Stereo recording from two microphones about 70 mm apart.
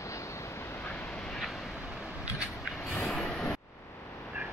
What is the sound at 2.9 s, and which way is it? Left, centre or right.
Vehicle, centre.